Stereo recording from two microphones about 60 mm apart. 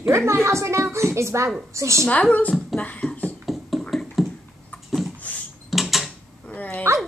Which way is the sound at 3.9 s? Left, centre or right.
Centre.